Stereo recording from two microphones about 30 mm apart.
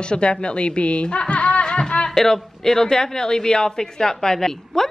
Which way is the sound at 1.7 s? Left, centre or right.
Left.